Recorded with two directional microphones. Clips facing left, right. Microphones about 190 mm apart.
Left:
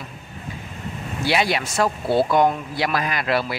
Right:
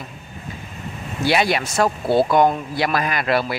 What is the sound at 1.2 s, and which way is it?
Speech, 50° right (ahead or behind).